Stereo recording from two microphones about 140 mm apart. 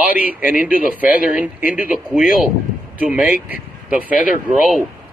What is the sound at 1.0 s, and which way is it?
Speech, 80° left.